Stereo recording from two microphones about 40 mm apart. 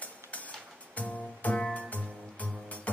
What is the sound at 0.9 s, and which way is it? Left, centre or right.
Music, left.